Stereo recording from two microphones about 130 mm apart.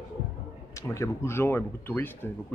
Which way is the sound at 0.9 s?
20° left (ahead or behind).